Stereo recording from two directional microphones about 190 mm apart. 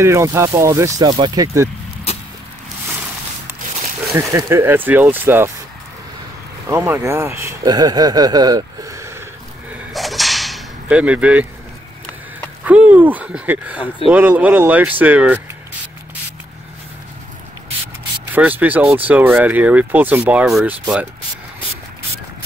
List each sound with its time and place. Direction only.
0.0 s speech: 15° right (ahead or behind)
4.1 s speech: 15° right (ahead or behind)
6.7 s speech: 10° right (ahead or behind)
9.9 s whip: centre (ahead or behind)
12.6 s speech: 10° right (ahead or behind)
18.3 s speech: 10° right (ahead or behind)